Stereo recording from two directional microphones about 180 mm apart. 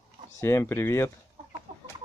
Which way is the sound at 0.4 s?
15° left (ahead or behind).